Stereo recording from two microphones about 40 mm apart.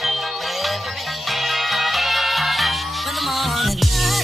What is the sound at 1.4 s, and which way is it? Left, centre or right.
Music, centre.